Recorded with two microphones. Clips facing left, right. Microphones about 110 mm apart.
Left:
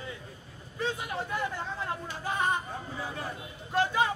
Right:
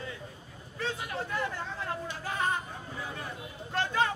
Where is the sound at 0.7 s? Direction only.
15° left (ahead or behind).